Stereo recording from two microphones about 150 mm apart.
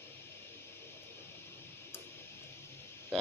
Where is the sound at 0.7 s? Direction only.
15° left (ahead or behind).